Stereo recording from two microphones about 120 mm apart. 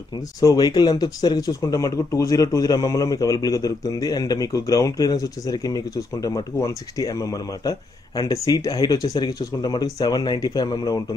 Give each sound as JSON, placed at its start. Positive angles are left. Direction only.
{"t": 0.4, "sound": "speech", "side_deg": 30}